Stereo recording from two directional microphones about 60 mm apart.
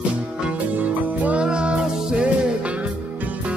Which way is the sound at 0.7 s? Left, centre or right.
Right.